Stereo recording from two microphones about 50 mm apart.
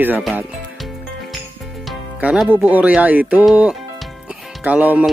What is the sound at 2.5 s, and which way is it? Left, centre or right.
Speech, right.